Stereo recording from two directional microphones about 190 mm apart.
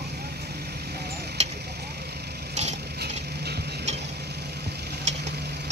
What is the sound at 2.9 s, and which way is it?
Stir, 55° right (ahead or behind).